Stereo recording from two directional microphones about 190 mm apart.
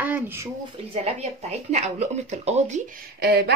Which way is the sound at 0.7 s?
35° right (ahead or behind).